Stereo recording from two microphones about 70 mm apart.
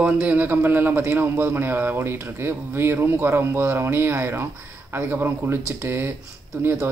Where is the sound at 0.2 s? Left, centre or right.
Right.